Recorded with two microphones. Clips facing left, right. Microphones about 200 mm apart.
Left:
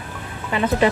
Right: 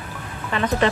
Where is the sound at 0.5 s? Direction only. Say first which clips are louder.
Left 2 dB; 10° left (ahead or behind).